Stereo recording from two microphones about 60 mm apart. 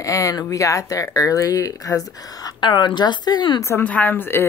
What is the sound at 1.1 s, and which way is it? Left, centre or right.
Speech, left.